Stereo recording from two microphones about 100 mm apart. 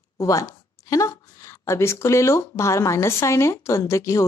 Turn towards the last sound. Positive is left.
turn(degrees=30)  # may be behind; listen again after turning